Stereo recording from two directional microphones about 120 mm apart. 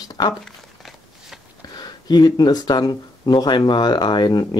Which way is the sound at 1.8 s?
35° left (ahead or behind).